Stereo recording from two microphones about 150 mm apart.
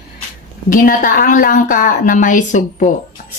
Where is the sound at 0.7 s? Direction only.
65° left (ahead or behind).